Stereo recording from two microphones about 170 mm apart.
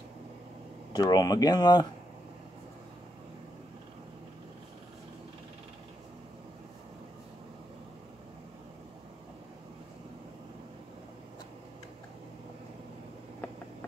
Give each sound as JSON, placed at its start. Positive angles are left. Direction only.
{"t": 0.9, "sound": "speech", "side_deg": 25}